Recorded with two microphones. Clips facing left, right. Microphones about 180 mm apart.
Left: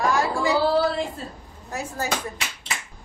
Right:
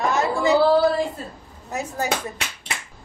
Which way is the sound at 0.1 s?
20° right (ahead or behind).